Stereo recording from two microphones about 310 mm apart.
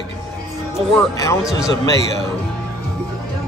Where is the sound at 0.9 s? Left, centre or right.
Centre.